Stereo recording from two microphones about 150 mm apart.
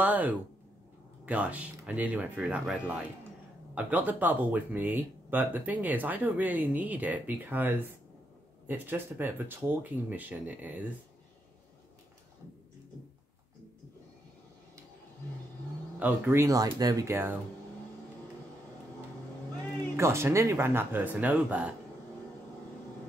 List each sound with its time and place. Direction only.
0.0 s speech: 10° right (ahead or behind)
16.0 s speech: 15° right (ahead or behind)
20.0 s speech: 15° right (ahead or behind)